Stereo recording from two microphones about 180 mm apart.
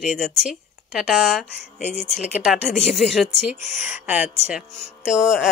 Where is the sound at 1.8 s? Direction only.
40° left (ahead or behind).